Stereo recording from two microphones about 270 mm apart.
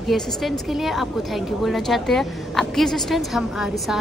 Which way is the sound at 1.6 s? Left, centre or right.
Centre.